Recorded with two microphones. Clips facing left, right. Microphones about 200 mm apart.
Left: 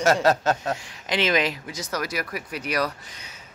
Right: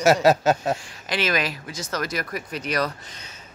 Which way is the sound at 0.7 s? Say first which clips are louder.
Left 1 dB; 20° left (ahead or behind).